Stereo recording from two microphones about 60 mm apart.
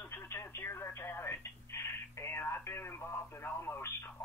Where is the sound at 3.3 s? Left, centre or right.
Left.